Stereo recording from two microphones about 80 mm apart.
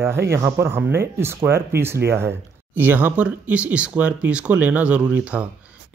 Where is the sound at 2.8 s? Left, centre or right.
Right.